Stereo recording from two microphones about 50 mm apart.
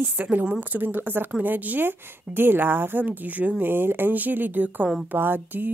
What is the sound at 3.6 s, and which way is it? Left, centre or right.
Speech, right.